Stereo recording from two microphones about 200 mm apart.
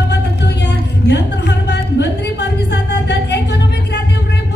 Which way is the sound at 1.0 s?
55° left (ahead or behind).